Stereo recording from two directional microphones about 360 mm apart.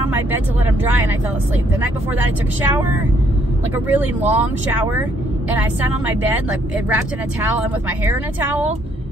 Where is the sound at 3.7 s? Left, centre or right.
Centre.